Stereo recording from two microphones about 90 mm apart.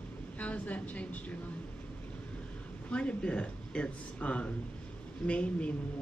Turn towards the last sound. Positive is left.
turn(degrees=15)  # may be behind; listen again after turning